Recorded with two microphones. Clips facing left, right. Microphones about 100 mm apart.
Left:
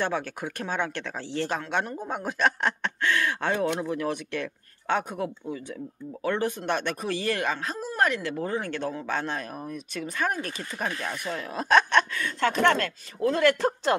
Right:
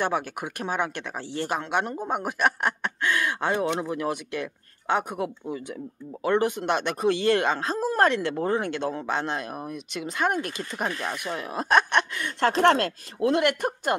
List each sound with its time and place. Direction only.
0.0 s speech: 15° right (ahead or behind)
12.4 s speech: 30° right (ahead or behind)
13.4 s speech: 15° right (ahead or behind)